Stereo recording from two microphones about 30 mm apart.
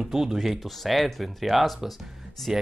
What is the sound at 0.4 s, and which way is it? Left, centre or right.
A man's voice, centre.